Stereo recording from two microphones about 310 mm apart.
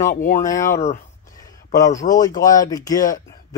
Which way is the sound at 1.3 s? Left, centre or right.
Centre.